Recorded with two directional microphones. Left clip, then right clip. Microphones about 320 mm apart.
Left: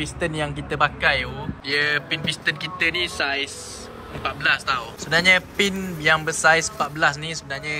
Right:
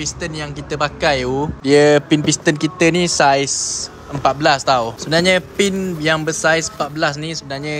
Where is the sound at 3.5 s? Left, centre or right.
Right.